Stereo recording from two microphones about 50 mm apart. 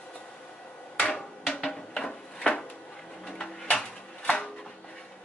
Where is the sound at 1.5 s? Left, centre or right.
Centre.